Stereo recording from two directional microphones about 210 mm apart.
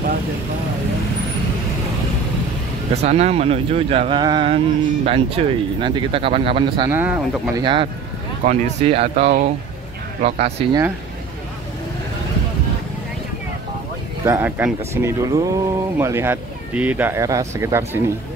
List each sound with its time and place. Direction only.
2.9 s speech: 30° right (ahead or behind)
6.9 s speech: 10° right (ahead or behind)
7.6 s speech: 25° right (ahead or behind)
14.2 s speech: 10° right (ahead or behind)